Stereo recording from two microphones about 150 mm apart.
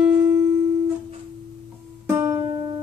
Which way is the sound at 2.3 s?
30° right (ahead or behind).